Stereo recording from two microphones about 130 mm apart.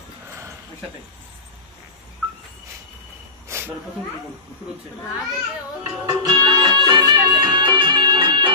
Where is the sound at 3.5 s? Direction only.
20° right (ahead or behind).